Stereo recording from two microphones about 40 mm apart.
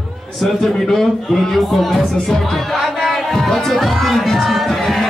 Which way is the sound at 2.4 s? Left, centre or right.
Centre.